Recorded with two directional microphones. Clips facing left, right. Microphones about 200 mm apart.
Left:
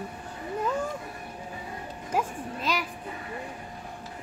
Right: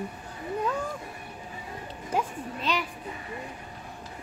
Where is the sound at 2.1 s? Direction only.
10° left (ahead or behind).